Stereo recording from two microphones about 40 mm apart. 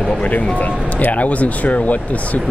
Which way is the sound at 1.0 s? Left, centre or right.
Left.